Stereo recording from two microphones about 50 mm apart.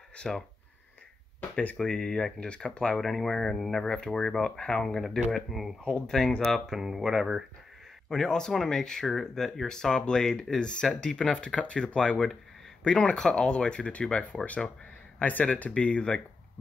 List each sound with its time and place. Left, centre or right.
0.1 s speech: centre
1.8 s speech: centre
2.4 s speech: left
3.0 s speech: centre
4.8 s speech: centre
6.0 s speech: centre
6.7 s speech: centre
8.1 s speech: centre; by 15.7 s left
15.7 s speech: left